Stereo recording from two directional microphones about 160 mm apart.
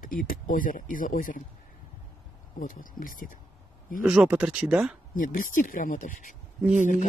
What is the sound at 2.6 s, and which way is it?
Speech, 55° left (ahead or behind).